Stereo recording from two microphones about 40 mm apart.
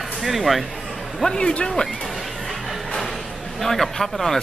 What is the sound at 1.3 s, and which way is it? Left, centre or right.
Speech, left.